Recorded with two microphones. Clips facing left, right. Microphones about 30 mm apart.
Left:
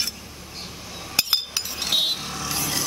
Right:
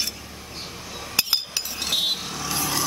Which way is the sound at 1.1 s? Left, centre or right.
Centre.